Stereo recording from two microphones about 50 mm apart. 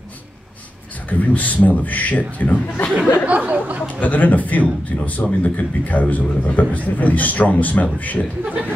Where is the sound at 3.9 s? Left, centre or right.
Left.